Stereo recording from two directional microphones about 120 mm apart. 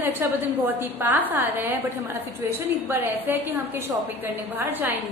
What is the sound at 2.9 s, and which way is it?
A woman's voice, 20° right (ahead or behind).